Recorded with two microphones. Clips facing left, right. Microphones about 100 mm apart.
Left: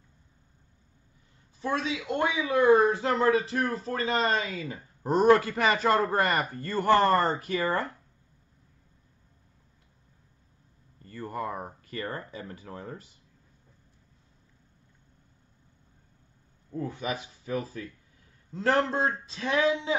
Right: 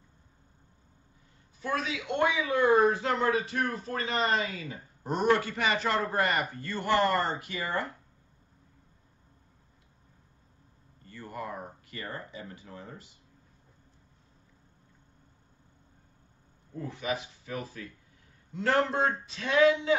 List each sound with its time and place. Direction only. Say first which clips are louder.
1.6 s speech: left 2 dB; 25° left (ahead or behind)
11.1 s speech: left 5 dB; 35° left (ahead or behind)
16.7 s speech: left 1 dB; 35° left (ahead or behind)